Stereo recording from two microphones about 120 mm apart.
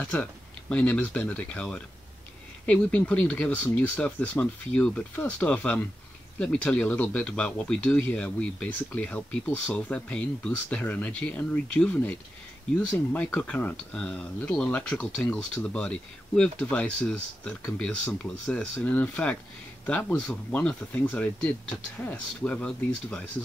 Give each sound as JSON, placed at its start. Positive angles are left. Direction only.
{"t": 0.0, "sound": "speech", "side_deg": 10}